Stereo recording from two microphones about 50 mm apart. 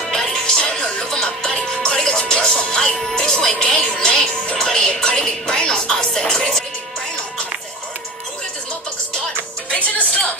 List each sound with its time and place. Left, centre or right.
0.1 s music: centre